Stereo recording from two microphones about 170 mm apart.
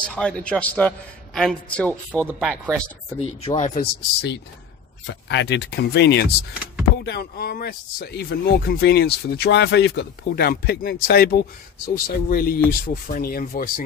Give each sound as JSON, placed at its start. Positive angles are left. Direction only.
{"t": 0.0, "sound": "a man's voice", "side_deg": 5}
{"t": 2.4, "sound": "speech", "side_deg": -10}
{"t": 3.2, "sound": "speech", "side_deg": 40}
{"t": 5.0, "sound": "speech", "side_deg": 90}